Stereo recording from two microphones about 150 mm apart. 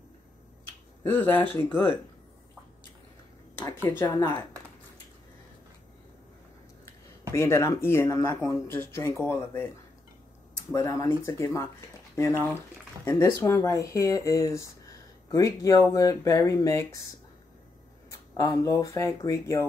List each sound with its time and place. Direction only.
1.0 s speech: 15° left (ahead or behind)
3.6 s speech: 20° left (ahead or behind)
7.3 s speech: 20° left (ahead or behind)
10.7 s speech: 20° left (ahead or behind)
18.4 s speech: 20° left (ahead or behind)